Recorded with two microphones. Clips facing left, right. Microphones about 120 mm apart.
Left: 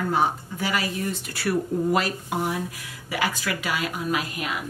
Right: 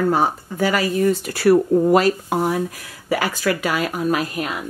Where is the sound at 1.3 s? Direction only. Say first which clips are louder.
Right 10 dB; 65° right (ahead or behind).